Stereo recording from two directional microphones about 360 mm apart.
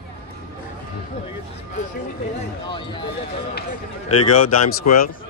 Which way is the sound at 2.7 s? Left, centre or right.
Centre.